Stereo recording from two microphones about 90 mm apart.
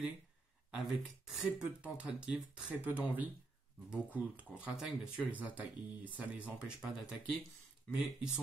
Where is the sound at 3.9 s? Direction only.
15° right (ahead or behind).